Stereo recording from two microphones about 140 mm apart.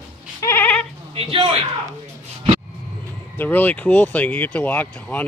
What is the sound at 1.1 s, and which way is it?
Speech, 40° right (ahead or behind).